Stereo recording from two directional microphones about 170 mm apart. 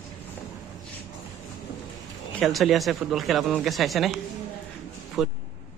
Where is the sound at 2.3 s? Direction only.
Centre (ahead or behind).